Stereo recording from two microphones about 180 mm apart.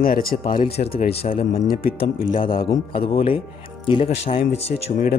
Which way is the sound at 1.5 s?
55° left (ahead or behind).